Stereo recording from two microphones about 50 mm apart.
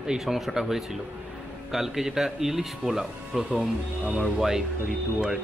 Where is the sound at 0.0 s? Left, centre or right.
Centre.